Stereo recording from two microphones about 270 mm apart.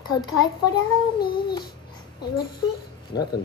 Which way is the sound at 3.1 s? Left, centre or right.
Left.